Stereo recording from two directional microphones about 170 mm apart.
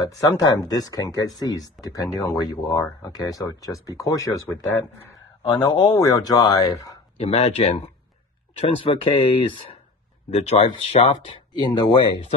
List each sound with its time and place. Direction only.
0.0 s speech: 20° left (ahead or behind)
5.4 s speech: 25° left (ahead or behind)
7.2 s speech: 35° left (ahead or behind)